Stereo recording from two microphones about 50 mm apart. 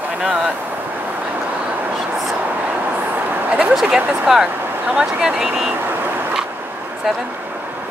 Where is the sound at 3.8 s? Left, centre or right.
Centre.